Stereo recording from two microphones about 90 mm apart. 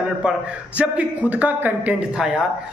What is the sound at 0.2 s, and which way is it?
Speech, 10° right (ahead or behind).